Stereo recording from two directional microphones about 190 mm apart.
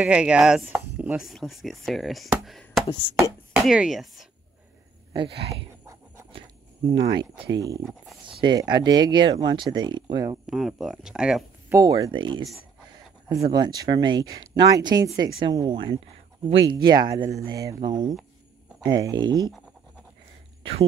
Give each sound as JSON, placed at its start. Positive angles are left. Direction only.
{"t": 0.0, "sound": "chopping", "side_deg": -5}
{"t": 3.5, "sound": "speech", "side_deg": -5}
{"t": 5.1, "sound": "speech", "side_deg": -25}
{"t": 6.9, "sound": "speech", "side_deg": -20}
{"t": 10.4, "sound": "speech", "side_deg": 0}
{"t": 11.7, "sound": "speech", "side_deg": -20}
{"t": 13.5, "sound": "speech", "side_deg": -20}